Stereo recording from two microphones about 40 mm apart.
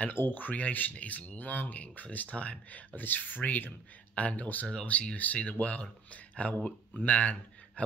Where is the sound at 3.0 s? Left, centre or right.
Left.